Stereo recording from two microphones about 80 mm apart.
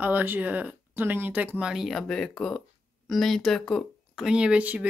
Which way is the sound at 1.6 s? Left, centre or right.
Centre.